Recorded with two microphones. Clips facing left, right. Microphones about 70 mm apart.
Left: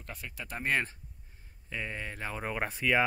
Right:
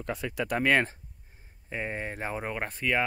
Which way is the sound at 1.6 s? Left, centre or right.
Right.